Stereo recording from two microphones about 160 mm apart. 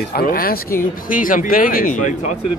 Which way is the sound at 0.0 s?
70° left (ahead or behind).